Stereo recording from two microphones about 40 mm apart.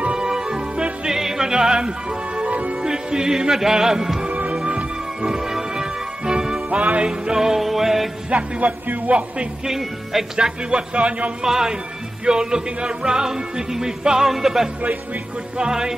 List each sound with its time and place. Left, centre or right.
0.2 s music: centre
2.8 s music: centre
6.7 s speech: right
7.1 s music: centre
8.3 s speech: right
9.7 s music: centre
10.4 s speech: right
11.4 s music: centre